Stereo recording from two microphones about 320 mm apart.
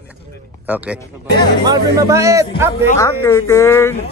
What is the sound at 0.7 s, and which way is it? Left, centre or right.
A man's voice, centre.